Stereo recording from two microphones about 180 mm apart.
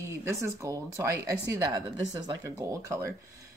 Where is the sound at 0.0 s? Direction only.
15° right (ahead or behind).